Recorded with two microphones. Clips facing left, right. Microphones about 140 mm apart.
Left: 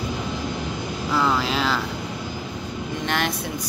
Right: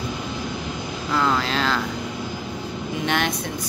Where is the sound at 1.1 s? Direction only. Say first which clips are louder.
Even; 5° left (ahead or behind).